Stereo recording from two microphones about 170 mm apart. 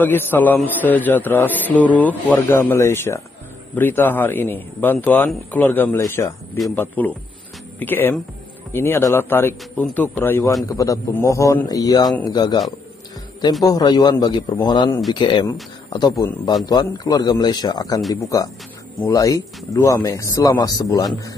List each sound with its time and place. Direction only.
0.0 s speech: 10° left (ahead or behind)
12.0 s speech: centre (ahead or behind)
12.3 s speech: 25° left (ahead or behind)
13.7 s speech: 25° left (ahead or behind)
19.0 s speech: 20° left (ahead or behind)